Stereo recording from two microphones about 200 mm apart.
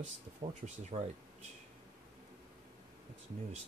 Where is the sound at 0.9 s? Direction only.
30° right (ahead or behind).